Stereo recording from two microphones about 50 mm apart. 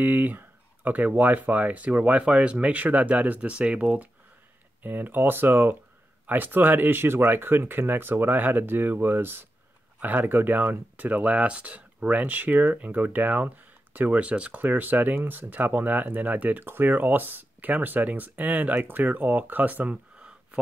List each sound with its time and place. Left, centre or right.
0.0 s speech: right
4.8 s speech: right
9.9 s speech: right
14.6 s speech: right
16.6 s speech: right